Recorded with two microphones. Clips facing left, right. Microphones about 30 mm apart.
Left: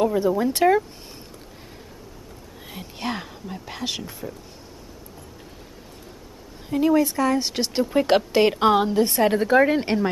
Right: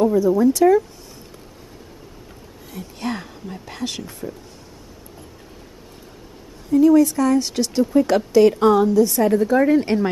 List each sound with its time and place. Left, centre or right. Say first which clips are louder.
0.0 s a woman's voice: right 5 dB; left
2.8 s speech: right 2 dB; centre
3.4 s speech: right 1 dB; centre
6.7 s speech: right 6 dB; left
7.9 s a woman's voice: right 3 dB; left